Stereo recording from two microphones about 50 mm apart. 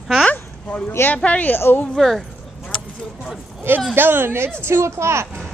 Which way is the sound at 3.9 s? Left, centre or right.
Right.